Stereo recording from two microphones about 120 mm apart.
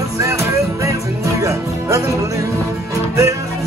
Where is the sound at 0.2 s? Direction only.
25° right (ahead or behind).